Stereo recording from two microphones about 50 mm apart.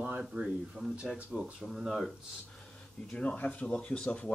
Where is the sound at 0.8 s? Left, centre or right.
Centre.